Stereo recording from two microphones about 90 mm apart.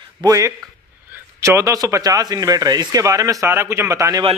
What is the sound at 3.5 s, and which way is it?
Speech, 30° right (ahead or behind).